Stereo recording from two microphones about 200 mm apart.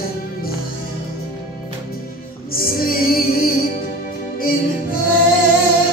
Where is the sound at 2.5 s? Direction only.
45° left (ahead or behind).